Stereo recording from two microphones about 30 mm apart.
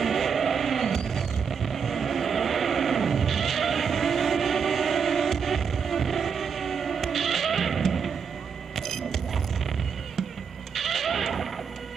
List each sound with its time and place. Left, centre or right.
0.0 s vehicle: centre
8.7 s music: centre
10.7 s a sound: centre